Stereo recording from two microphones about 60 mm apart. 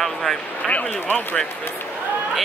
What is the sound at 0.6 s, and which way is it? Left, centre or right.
Speech, left.